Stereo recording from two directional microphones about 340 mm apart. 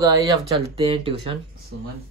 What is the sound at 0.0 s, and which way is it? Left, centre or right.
Speech, centre.